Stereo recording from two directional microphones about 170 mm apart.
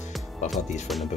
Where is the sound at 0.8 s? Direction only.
Centre (ahead or behind).